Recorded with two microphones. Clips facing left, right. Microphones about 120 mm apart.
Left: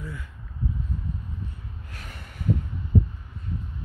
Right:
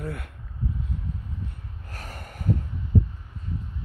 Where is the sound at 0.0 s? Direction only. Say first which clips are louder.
Right 4 dB; 65° right (ahead or behind).